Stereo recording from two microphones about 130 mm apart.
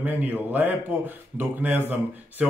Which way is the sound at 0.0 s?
15° right (ahead or behind).